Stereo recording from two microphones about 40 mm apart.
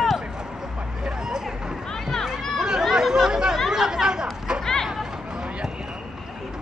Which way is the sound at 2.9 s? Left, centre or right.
Centre.